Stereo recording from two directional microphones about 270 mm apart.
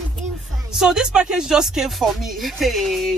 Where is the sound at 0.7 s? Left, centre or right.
Centre.